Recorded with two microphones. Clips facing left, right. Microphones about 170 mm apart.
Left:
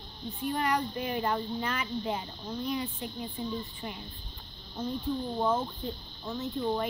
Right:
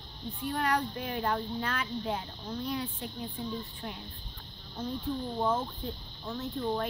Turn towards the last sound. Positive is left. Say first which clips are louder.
# left 2 dB
turn(degrees=5)  # may be behind; listen again after turning